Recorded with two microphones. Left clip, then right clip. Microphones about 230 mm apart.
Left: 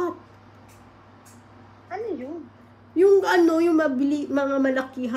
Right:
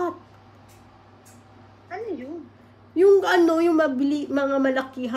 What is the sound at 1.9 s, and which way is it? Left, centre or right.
A woman's voice, centre.